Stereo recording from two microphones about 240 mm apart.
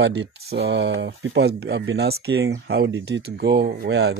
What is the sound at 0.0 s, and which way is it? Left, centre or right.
Speech, right.